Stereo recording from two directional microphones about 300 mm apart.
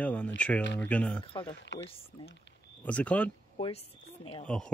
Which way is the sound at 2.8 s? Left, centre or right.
Centre.